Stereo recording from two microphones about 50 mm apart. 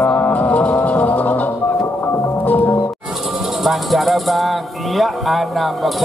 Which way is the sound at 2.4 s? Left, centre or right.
Left.